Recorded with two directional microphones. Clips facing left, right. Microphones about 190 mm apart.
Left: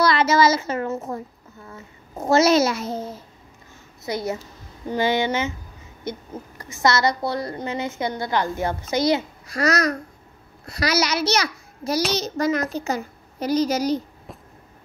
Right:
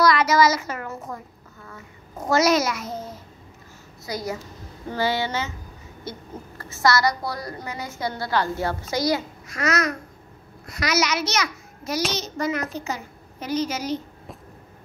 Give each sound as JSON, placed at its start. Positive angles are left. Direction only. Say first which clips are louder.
{"t": 0.0, "sound": "a sound", "louder": "left 1 dB", "side_deg": 25}
{"t": 1.7, "sound": "a woman's voice", "louder": "left 2 dB", "side_deg": 25}
{"t": 4.0, "sound": "a woman's voice", "louder": "left 3 dB", "side_deg": 25}
{"t": 9.6, "sound": "a child's voice", "louder": "left 3 dB", "side_deg": 35}